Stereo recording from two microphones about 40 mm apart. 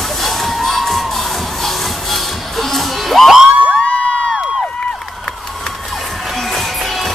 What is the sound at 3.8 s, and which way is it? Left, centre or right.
Crowd, left.